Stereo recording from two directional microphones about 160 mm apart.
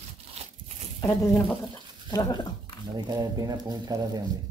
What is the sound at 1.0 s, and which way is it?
Speech, 10° left (ahead or behind).